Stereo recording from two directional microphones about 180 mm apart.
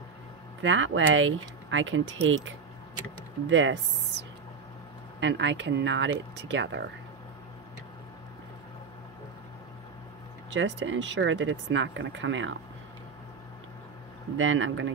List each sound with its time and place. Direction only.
0.6 s speech: 90° right
10.5 s speech: 90° right
14.3 s speech: 90° right